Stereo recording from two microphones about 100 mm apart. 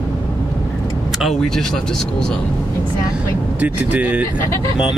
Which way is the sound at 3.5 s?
15° right (ahead or behind).